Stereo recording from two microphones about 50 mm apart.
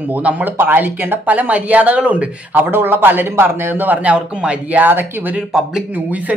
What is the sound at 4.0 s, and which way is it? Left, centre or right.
Speech, right.